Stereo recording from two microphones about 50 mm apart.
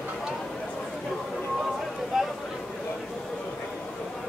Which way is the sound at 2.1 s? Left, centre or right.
Centre.